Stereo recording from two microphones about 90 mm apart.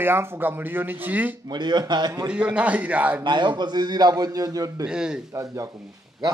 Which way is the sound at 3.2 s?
60° right (ahead or behind).